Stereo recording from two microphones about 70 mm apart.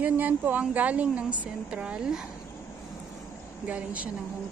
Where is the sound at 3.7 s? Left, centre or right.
Right.